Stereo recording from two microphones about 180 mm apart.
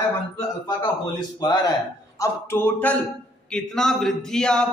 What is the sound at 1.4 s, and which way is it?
A man's voice, 20° left (ahead or behind).